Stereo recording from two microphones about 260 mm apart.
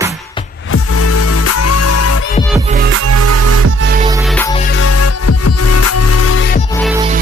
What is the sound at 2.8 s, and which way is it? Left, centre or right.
Music, right.